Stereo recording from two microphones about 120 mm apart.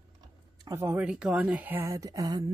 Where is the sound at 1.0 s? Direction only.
5° right (ahead or behind); by 2.4 s 30° right (ahead or behind).